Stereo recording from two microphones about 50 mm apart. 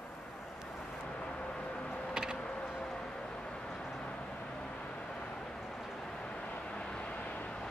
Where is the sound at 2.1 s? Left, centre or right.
Centre.